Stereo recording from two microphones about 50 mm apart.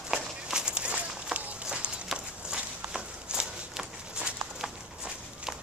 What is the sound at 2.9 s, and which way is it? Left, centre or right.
Walk, centre.